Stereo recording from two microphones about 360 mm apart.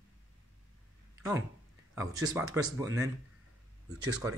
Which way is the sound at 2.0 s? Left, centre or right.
Centre.